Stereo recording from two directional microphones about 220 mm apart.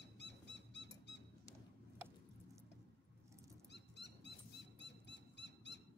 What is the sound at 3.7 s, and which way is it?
Dog, 50° left (ahead or behind).